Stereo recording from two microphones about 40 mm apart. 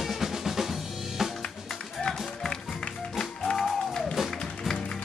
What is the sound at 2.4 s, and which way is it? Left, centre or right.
Music, centre.